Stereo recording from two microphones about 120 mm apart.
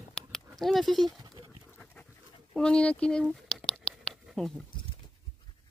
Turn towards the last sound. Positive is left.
turn(degrees=5)  # may be behind; listen again after turning